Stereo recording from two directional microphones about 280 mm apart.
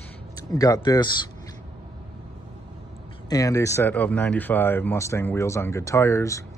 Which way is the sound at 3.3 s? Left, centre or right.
Centre.